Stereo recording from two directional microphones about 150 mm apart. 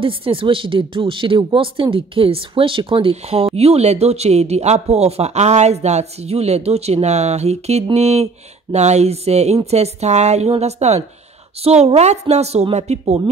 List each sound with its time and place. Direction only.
0.0 s speech: 35° right (ahead or behind)